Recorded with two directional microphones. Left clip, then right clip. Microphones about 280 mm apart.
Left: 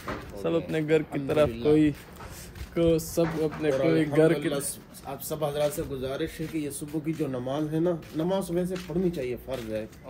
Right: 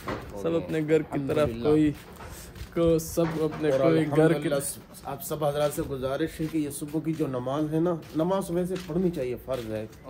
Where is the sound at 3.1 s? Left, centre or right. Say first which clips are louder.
Even; centre.